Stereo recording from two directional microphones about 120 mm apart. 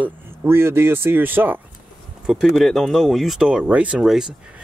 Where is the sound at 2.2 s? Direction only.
Centre (ahead or behind).